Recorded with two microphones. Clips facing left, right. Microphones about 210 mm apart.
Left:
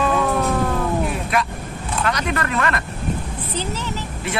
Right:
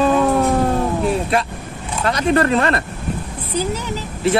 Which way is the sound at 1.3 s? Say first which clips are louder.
Right 3 dB; 30° right (ahead or behind).